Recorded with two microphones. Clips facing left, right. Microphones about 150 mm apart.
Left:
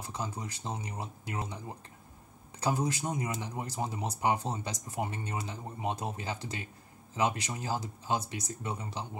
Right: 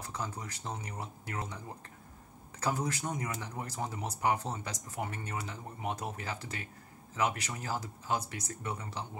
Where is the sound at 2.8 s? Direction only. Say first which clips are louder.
Left 3 dB; 15° left (ahead or behind).